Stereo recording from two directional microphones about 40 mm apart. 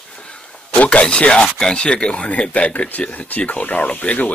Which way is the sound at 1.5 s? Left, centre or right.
Left.